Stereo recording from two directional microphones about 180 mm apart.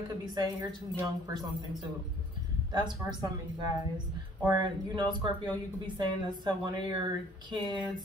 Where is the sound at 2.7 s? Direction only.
25° right (ahead or behind).